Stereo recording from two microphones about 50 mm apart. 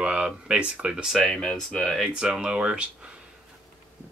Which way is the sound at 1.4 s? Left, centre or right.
Centre.